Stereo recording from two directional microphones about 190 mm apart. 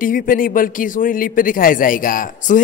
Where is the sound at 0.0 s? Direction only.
45° left (ahead or behind).